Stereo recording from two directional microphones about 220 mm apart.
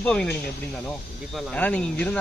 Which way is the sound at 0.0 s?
5° left (ahead or behind).